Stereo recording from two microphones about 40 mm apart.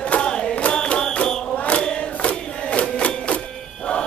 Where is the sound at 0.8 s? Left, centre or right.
Left.